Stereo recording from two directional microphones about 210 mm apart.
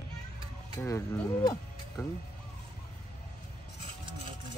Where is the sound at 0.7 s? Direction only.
15° left (ahead or behind).